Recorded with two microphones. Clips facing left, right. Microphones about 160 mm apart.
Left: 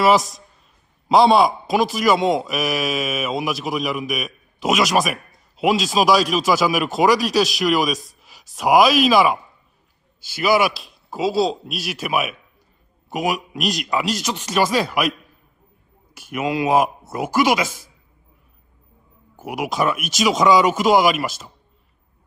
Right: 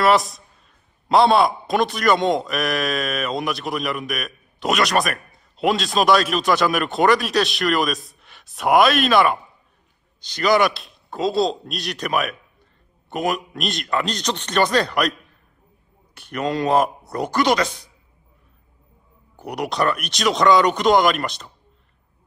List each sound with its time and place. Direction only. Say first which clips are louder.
0.0 s a man's voice: left 1 dB; centre (ahead or behind)
16.2 s a man's voice: left 1 dB; 5° left (ahead or behind)
19.3 s a man's voice: left 1 dB; 5° left (ahead or behind)